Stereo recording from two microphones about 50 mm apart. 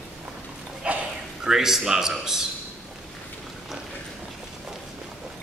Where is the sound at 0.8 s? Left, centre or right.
Right.